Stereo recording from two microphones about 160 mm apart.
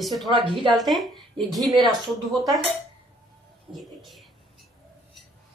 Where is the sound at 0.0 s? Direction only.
Centre (ahead or behind).